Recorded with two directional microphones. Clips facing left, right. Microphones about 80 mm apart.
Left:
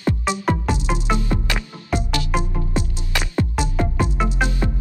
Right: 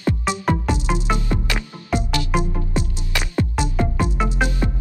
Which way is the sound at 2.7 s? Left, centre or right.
Left.